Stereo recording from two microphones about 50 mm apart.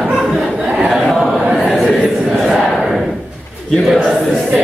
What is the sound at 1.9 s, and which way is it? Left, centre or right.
Crowd, centre.